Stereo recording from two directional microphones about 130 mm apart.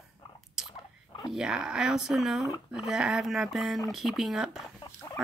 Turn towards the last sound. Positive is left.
turn(degrees=25)  # may be behind; listen again after turning